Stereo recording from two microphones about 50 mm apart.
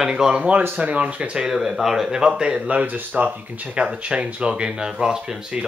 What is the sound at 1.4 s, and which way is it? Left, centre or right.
Speech, centre.